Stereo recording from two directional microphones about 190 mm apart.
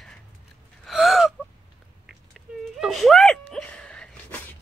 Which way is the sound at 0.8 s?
Centre (ahead or behind).